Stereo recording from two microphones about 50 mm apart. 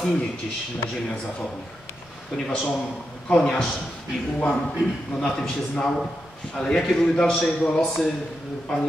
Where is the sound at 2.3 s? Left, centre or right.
Centre.